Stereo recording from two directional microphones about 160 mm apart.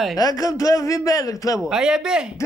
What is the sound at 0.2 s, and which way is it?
A man's voice, 25° left (ahead or behind).